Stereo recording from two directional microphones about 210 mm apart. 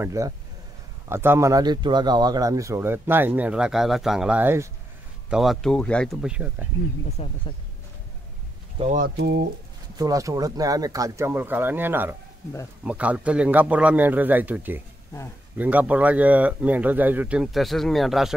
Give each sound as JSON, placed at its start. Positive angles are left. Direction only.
{"t": 0.0, "sound": "speech", "side_deg": -15}
{"t": 7.1, "sound": "speech", "side_deg": 30}
{"t": 8.7, "sound": "speech", "side_deg": -35}
{"t": 9.9, "sound": "speech", "side_deg": -15}